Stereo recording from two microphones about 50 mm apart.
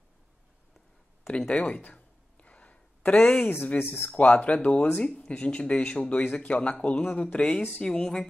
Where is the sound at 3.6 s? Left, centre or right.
Left.